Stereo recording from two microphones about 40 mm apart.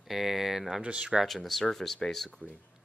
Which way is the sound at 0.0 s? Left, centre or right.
Centre.